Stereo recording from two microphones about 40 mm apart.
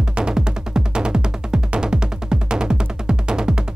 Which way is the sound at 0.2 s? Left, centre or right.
Centre.